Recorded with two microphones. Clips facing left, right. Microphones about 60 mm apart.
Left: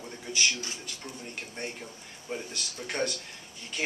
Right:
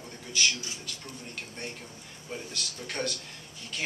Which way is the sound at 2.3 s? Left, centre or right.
Centre.